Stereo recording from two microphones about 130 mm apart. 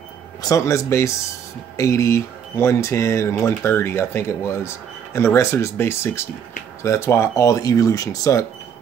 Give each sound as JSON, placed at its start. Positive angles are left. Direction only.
{"t": 0.4, "sound": "speech", "side_deg": 25}